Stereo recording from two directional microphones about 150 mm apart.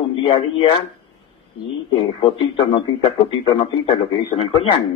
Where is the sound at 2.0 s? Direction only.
35° left (ahead or behind).